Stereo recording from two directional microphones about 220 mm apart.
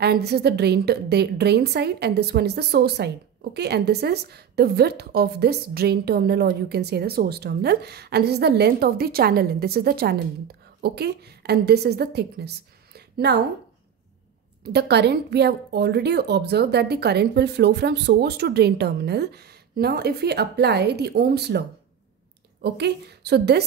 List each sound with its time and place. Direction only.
0.0 s a woman's voice: 45° right (ahead or behind)
14.6 s a woman's voice: 50° right (ahead or behind)